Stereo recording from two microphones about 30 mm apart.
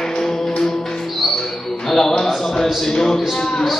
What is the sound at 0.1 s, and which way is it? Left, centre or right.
Music, centre.